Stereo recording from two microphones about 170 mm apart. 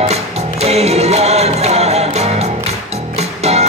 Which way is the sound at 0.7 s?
40° right (ahead or behind).